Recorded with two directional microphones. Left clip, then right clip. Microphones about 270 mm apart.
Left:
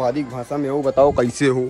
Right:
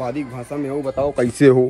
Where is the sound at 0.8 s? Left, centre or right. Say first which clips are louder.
Left 7 dB; left.